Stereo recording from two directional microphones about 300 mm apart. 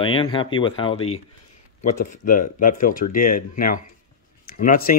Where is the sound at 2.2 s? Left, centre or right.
Left.